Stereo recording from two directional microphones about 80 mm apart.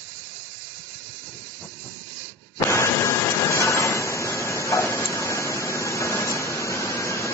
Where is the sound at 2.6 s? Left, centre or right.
Left.